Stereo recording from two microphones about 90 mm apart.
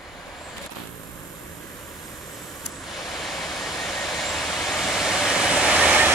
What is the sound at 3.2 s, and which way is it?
Vehicle, centre (ahead or behind).